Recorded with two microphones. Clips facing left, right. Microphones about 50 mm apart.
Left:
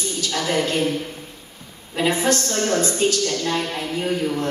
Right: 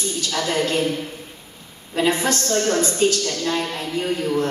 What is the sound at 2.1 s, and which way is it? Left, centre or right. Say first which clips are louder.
A woman's voice: even; centre.